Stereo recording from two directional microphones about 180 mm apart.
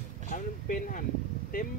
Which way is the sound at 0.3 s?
50° left (ahead or behind).